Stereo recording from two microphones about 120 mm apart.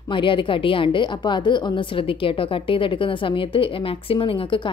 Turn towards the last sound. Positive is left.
turn(degrees=45)  # may be behind; listen again after turning